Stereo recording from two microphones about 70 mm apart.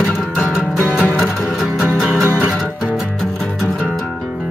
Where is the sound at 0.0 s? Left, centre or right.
Centre.